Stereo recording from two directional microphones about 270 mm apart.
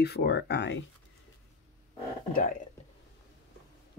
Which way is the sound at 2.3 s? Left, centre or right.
Left.